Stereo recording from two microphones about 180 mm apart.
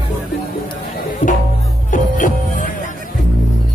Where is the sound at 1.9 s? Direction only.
45° left (ahead or behind).